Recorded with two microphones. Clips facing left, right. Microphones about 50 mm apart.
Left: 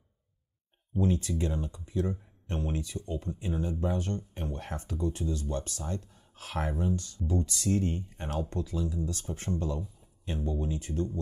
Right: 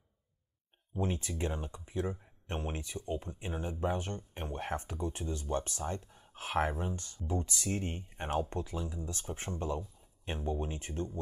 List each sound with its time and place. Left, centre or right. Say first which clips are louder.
0.9 s speech: left 6 dB; right